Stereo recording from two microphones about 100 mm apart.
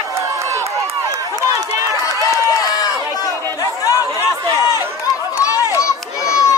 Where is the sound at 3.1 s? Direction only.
35° left (ahead or behind).